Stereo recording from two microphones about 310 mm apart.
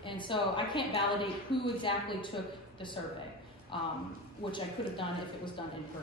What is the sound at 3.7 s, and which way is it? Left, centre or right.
Speech, centre.